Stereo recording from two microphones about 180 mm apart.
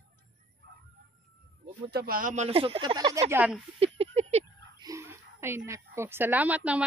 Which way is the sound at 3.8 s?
35° right (ahead or behind).